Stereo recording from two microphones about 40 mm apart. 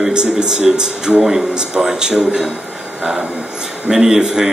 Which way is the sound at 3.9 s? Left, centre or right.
Centre.